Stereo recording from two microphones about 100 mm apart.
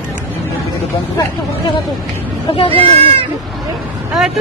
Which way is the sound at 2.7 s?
65° right (ahead or behind).